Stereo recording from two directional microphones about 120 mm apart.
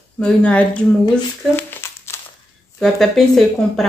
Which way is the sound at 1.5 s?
20° left (ahead or behind).